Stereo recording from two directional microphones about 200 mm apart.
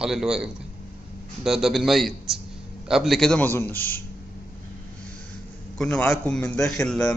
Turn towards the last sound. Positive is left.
turn(degrees=5)  # may be behind; listen again after turning